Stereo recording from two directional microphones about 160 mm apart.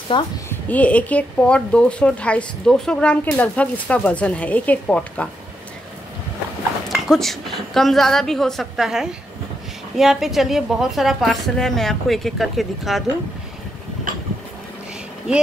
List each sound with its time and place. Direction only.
0.1 s a woman's voice: 30° left (ahead or behind)
0.5 s a woman's voice: 10° left (ahead or behind)
6.9 s a woman's voice: centre (ahead or behind)